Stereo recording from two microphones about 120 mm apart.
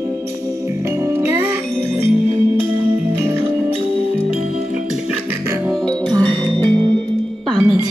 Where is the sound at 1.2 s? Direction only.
20° right (ahead or behind).